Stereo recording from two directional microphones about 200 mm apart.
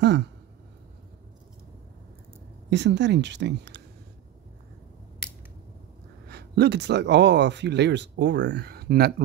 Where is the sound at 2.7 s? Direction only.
60° right (ahead or behind).